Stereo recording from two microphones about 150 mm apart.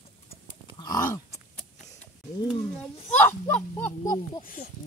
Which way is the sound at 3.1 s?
10° left (ahead or behind).